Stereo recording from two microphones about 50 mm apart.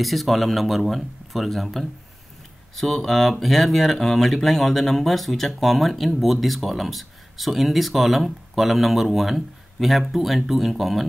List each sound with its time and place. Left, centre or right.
0.0 s speech: centre